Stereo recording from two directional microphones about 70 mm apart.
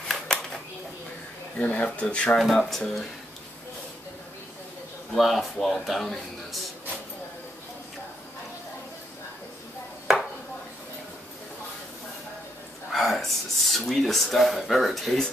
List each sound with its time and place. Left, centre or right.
0.1 s a sound: centre
1.6 s speech: centre
2.7 s speech: centre
5.1 s speech: centre
12.9 s speech: centre